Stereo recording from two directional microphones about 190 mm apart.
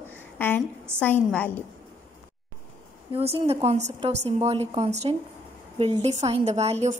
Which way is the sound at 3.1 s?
30° right (ahead or behind).